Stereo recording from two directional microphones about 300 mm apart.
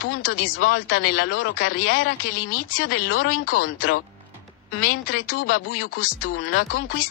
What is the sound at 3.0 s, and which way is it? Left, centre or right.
Speech, left.